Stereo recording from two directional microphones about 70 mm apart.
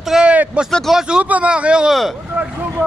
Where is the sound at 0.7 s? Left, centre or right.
Centre.